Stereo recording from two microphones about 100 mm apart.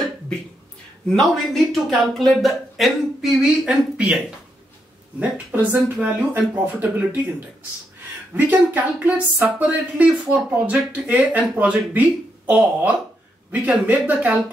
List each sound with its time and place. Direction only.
1.0 s speech: 5° left (ahead or behind)
5.2 s speech: 15° right (ahead or behind)
8.5 s speech: 15° right (ahead or behind)